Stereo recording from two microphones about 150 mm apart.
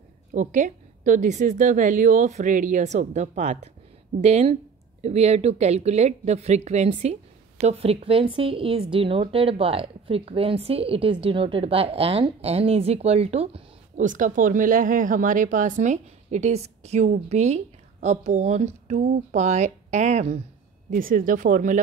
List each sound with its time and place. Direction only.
0.3 s a woman's voice: 55° right (ahead or behind)
14.0 s speech: 60° right (ahead or behind)
20.9 s speech: 65° right (ahead or behind)